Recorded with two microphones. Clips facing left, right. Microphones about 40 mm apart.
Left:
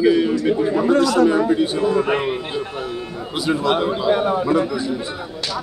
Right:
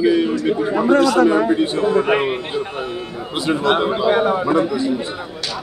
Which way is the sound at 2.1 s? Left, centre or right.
Centre.